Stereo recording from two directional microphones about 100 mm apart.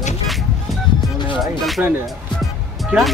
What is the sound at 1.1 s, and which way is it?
Music, 50° left (ahead or behind).